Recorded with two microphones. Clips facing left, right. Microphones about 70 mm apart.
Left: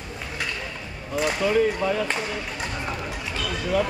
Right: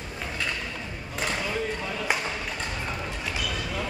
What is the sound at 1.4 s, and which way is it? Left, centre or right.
Speech, left.